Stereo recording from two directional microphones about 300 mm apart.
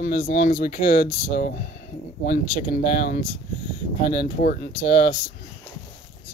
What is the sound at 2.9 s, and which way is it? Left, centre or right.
Speech, left.